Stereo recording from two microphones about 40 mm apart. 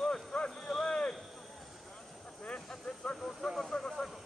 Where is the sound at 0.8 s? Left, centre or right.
Left.